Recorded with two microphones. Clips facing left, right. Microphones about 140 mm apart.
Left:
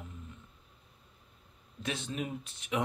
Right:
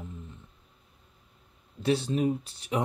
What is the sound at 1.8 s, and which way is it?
Speech, 35° right (ahead or behind).